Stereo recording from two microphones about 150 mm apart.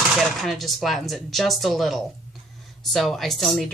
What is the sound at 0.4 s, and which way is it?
Speech, centre (ahead or behind).